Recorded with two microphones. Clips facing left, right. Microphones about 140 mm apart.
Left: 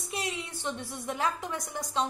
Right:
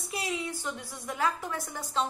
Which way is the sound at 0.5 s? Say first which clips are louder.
Left 1 dB; 25° left (ahead or behind).